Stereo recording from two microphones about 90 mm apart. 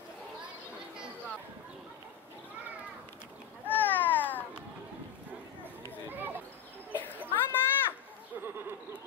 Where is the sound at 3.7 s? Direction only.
20° left (ahead or behind).